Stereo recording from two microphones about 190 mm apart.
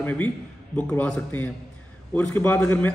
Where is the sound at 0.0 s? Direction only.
10° left (ahead or behind).